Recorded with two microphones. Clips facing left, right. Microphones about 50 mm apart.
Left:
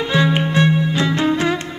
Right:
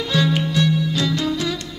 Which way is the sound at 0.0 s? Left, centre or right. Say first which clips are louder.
Left 3 dB; left.